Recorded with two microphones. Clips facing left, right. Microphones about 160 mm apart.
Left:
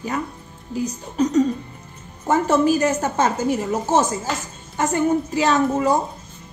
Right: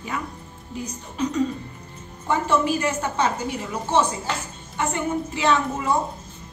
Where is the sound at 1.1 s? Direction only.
40° left (ahead or behind).